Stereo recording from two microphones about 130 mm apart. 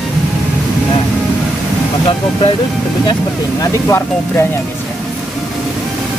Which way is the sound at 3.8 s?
20° left (ahead or behind).